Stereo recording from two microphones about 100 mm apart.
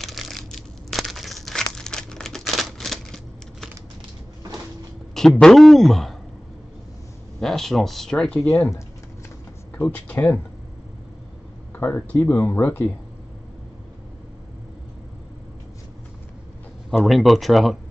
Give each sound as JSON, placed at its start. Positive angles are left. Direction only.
{"t": 0.0, "sound": "a sound", "side_deg": 0}
{"t": 5.1, "sound": "a man's voice", "side_deg": 5}
{"t": 7.3, "sound": "speech", "side_deg": 5}
{"t": 9.8, "sound": "speech", "side_deg": 15}
{"t": 11.7, "sound": "speech", "side_deg": 20}
{"t": 16.9, "sound": "a man's voice", "side_deg": 0}